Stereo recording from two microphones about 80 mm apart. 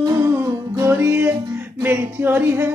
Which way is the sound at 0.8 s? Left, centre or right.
Right.